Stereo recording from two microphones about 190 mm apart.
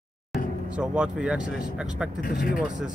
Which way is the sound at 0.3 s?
5° right (ahead or behind).